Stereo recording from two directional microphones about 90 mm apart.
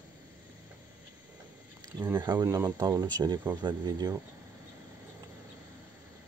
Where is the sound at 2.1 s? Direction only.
55° right (ahead or behind).